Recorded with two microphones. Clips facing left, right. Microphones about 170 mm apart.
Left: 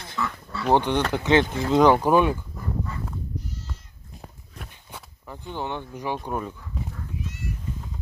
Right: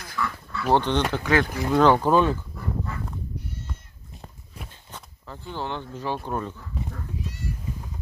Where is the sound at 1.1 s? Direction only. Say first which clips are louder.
Left 3 dB; 25° left (ahead or behind).